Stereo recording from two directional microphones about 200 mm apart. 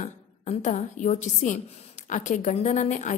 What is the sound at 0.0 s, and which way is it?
A woman's voice, 35° left (ahead or behind).